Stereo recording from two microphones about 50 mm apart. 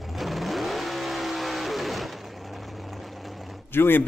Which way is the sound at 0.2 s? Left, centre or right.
Centre.